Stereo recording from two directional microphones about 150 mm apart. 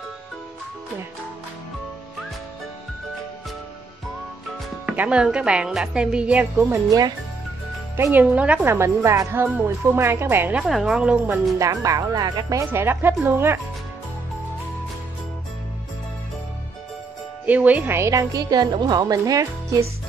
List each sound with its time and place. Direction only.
4.8 s a woman's voice: 10° right (ahead or behind)
10.6 s speech: centre (ahead or behind)
11.5 s a woman's voice: 20° right (ahead or behind)
17.5 s a woman's voice: 10° right (ahead or behind)